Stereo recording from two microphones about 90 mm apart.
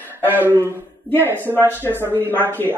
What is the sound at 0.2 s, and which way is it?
Speech, 20° right (ahead or behind).